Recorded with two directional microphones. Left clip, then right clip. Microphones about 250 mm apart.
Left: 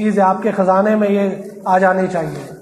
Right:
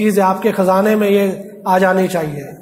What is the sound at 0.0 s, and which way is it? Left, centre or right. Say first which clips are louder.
A man's voice: right 1 dB; right.